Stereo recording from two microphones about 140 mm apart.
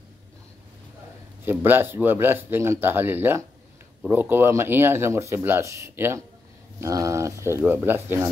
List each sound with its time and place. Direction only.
1.4 s speech: 15° right (ahead or behind)